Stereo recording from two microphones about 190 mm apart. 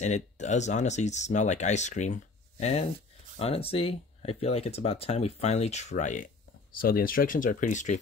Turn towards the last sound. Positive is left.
turn(degrees=40)  # may be behind; listen again after turning